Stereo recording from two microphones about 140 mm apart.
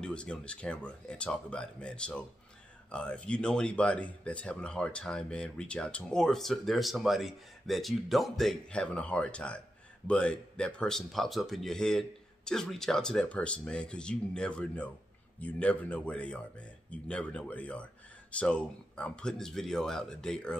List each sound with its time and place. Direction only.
0.0 s speech: 5° left (ahead or behind)